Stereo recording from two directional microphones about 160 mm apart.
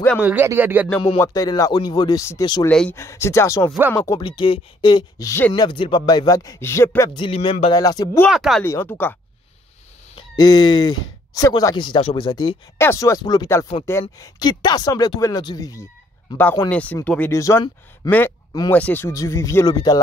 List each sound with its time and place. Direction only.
0.2 s speech: 10° right (ahead or behind)
1.2 s speech: 25° left (ahead or behind)
2.7 s speech: 5° left (ahead or behind)
3.0 s speech: 20° left (ahead or behind)
4.2 s speech: 30° left (ahead or behind)
7.2 s speech: 35° left (ahead or behind)
7.7 s speech: 25° left (ahead or behind)
8.3 s speech: centre (ahead or behind)
8.6 s speech: 15° left (ahead or behind)
10.1 s speech: 25° left (ahead or behind)
12.7 s speech: 15° left (ahead or behind)